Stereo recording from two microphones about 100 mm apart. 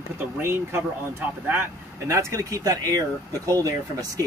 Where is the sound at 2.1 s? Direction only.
30° right (ahead or behind).